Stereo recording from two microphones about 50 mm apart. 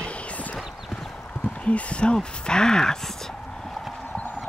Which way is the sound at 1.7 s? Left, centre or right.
Left.